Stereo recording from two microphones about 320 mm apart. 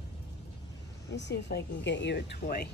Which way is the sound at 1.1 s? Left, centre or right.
Left.